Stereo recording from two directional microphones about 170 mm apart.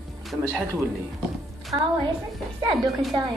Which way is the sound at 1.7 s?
30° right (ahead or behind).